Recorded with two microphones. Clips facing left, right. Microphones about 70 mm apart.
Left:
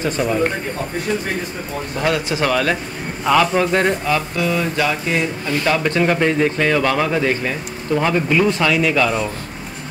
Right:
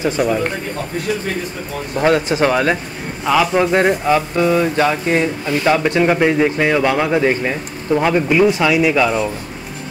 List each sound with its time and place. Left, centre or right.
0.2 s a man's voice: centre
2.0 s speech: right
3.3 s a man's voice: centre
4.0 s speech: right
5.8 s a man's voice: centre